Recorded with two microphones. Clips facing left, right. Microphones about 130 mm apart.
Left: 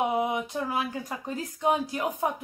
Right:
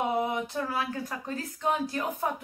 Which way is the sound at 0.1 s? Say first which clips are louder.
Left 1 dB; 15° left (ahead or behind).